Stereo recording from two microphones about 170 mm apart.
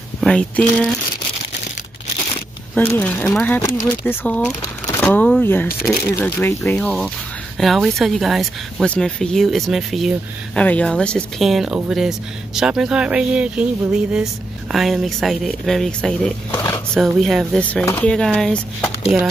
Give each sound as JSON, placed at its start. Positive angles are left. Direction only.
{"t": 0.2, "sound": "speech", "side_deg": 5}
{"t": 2.7, "sound": "speech", "side_deg": 10}
{"t": 16.5, "sound": "a sound", "side_deg": 15}
{"t": 17.0, "sound": "speech", "side_deg": 0}